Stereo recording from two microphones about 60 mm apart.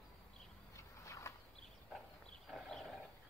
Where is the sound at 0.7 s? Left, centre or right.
Left.